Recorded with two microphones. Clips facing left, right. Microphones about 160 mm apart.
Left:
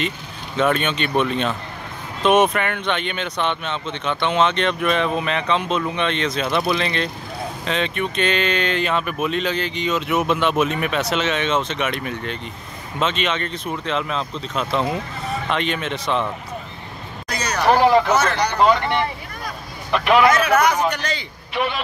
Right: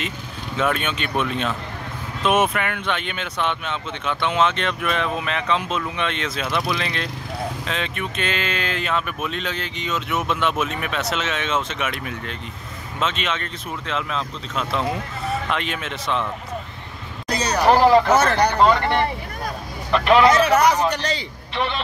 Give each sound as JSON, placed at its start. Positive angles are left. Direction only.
{"t": 0.6, "sound": "speech", "side_deg": -5}
{"t": 17.3, "sound": "a sound", "side_deg": -30}
{"t": 17.6, "sound": "speech", "side_deg": 0}
{"t": 19.9, "sound": "speech", "side_deg": 5}
{"t": 20.3, "sound": "speech", "side_deg": -30}
{"t": 21.5, "sound": "a man's voice", "side_deg": 10}